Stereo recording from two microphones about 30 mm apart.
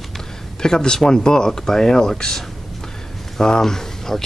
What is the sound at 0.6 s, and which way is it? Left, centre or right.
Speech, left.